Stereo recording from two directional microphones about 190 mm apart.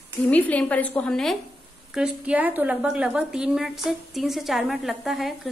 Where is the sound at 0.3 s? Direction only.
5° left (ahead or behind).